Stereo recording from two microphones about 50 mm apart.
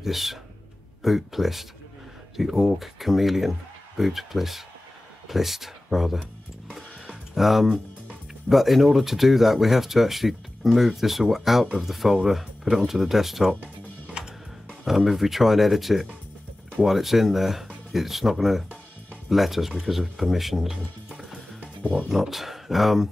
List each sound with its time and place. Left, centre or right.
0.0 s speech: centre
7.3 s speech: centre
14.2 s music: centre
14.9 s speech: centre